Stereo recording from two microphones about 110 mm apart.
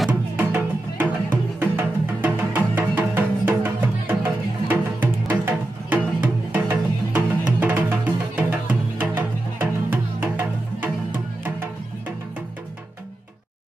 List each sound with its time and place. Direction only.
0.4 s music: 15° right (ahead or behind)